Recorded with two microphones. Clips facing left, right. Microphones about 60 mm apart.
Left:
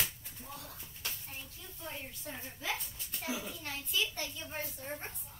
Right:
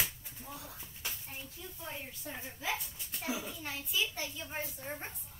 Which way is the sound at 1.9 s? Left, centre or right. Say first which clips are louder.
Left 1 dB; centre.